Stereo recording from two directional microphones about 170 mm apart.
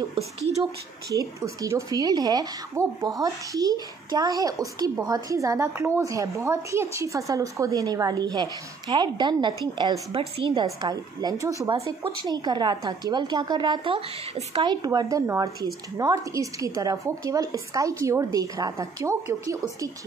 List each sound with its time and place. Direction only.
0.1 s speech: 40° right (ahead or behind)
1.1 s speech: 20° right (ahead or behind)